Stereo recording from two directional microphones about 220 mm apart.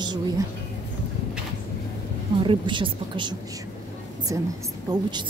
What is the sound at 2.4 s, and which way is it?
Speech, 20° right (ahead or behind).